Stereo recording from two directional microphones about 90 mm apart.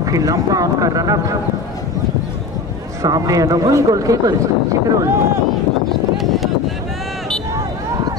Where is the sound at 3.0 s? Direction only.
45° right (ahead or behind).